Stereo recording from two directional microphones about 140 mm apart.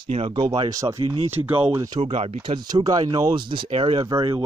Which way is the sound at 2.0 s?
45° right (ahead or behind).